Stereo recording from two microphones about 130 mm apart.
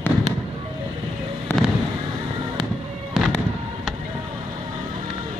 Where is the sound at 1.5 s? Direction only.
15° left (ahead or behind).